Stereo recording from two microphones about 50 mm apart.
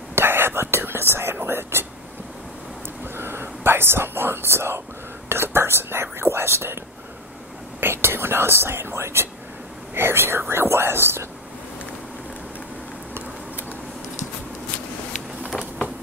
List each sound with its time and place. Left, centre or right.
0.1 s whispering: right
3.2 s whispering: right
5.3 s speech: right
7.8 s speech: right